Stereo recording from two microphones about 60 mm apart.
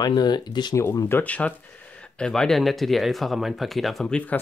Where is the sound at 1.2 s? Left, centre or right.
Left.